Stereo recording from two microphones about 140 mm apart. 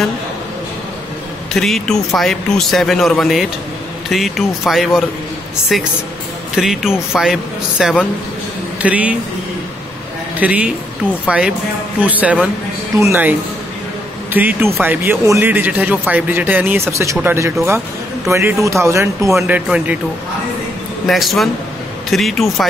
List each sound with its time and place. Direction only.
1.5 s a man's voice: 5° left (ahead or behind)
10.4 s speech: 10° right (ahead or behind)
19.3 s speech: 10° right (ahead or behind)
21.1 s a man's voice: centre (ahead or behind)